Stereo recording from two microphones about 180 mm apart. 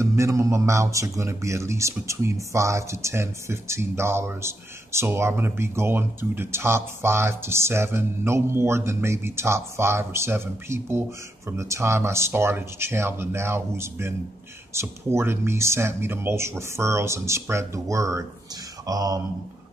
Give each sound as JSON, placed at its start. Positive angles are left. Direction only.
{"t": 0.0, "sound": "speech", "side_deg": -15}